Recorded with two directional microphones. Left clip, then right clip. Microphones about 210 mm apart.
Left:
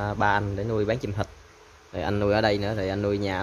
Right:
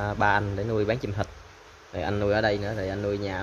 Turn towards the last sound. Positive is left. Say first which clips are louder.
# left 3 dB
turn(degrees=25)  # may be behind; listen again after turning